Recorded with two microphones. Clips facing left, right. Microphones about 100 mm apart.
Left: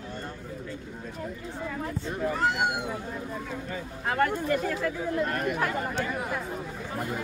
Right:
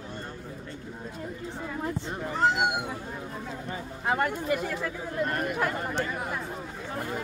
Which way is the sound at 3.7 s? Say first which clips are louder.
Right 2 dB; 15° right (ahead or behind).